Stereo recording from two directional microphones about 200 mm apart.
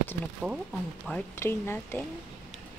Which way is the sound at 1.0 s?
10° left (ahead or behind).